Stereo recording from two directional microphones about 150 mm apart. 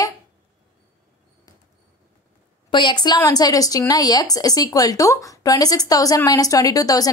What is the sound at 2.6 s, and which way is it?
A woman's voice, 30° left (ahead or behind).